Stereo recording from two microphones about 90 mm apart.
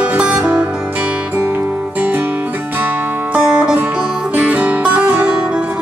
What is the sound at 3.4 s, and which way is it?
Music, 10° right (ahead or behind).